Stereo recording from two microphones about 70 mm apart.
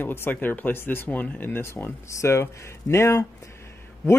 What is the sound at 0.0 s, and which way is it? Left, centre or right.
Speech, left.